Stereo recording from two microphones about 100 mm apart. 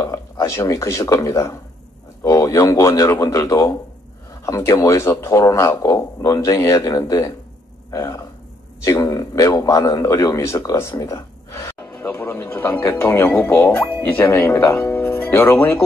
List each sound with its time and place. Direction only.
0.0 s a man's voice: 30° left (ahead or behind)